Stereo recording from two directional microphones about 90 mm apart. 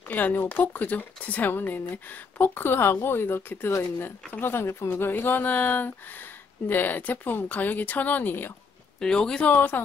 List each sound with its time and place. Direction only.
0.1 s speech: 20° left (ahead or behind)
9.0 s speech: 10° left (ahead or behind)